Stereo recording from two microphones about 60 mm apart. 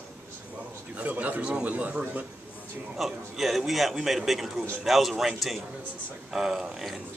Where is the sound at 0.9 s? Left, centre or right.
Right.